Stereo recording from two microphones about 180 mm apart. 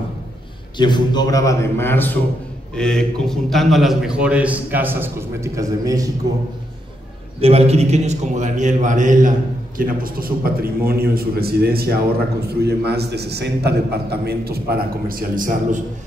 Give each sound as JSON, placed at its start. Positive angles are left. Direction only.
{"t": 0.7, "sound": "a man's voice", "side_deg": 25}
{"t": 7.3, "sound": "a man's voice", "side_deg": -35}